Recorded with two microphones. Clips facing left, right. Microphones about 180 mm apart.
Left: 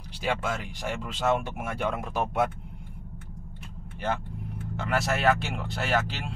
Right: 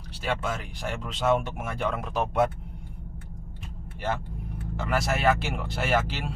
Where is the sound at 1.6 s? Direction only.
5° left (ahead or behind).